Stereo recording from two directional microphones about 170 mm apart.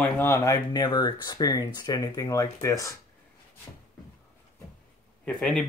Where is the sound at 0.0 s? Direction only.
15° left (ahead or behind).